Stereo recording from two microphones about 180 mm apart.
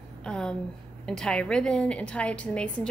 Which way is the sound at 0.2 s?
5° left (ahead or behind).